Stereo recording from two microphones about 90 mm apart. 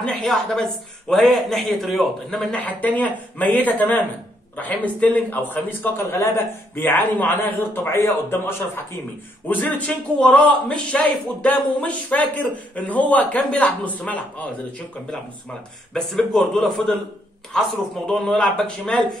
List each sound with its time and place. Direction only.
0.0 s a man's voice: 5° left (ahead or behind)
2.5 s a man's voice: 15° left (ahead or behind)
15.9 s a man's voice: 5° left (ahead or behind)